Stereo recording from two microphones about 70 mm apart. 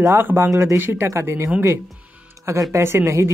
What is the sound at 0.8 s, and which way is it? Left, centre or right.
Speech, right.